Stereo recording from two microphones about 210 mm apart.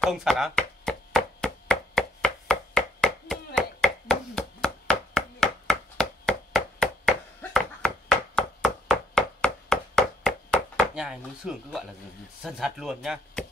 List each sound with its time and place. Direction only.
0.0 s chopping: centre (ahead or behind)
8.4 s a sound: centre (ahead or behind)
12.4 s speech: centre (ahead or behind)